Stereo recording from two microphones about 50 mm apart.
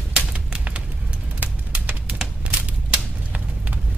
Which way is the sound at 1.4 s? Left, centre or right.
Right.